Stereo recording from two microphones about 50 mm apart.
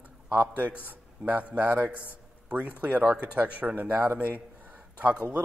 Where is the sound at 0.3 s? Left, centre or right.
Right.